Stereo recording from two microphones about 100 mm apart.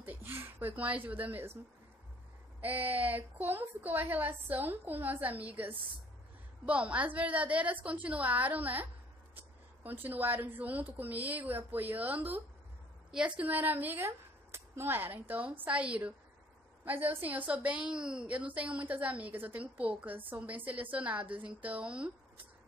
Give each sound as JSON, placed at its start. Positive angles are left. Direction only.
{"t": 0.0, "sound": "speech", "side_deg": -20}
{"t": 2.6, "sound": "a woman's voice", "side_deg": -15}
{"t": 10.0, "sound": "a woman's voice", "side_deg": -20}